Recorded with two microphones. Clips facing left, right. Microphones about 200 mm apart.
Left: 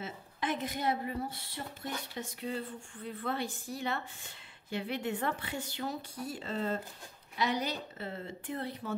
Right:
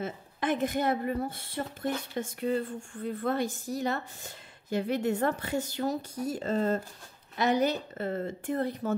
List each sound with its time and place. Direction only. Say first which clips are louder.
0.0 s speech: right 5 dB; 50° right (ahead or behind)